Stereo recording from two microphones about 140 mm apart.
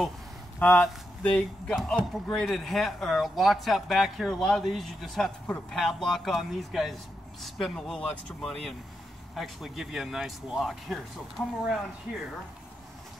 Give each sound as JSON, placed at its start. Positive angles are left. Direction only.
{"t": 0.6, "sound": "speech", "side_deg": 10}
{"t": 1.8, "sound": "speech", "side_deg": -5}